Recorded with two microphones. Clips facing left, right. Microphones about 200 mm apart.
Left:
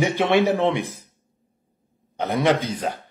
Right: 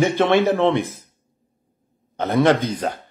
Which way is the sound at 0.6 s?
15° left (ahead or behind).